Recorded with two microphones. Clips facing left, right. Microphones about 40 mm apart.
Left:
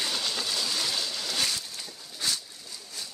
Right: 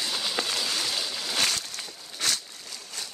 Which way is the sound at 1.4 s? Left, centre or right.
Right.